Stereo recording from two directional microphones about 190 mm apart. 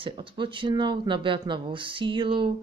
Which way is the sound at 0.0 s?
25° right (ahead or behind).